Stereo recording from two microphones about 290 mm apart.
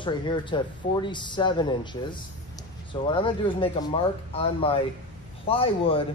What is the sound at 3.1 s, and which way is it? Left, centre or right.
Speech, centre.